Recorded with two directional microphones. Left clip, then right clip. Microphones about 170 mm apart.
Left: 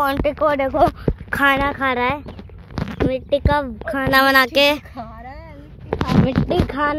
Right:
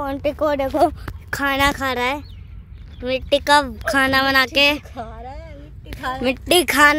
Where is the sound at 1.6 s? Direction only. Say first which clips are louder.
Even; 15° right (ahead or behind).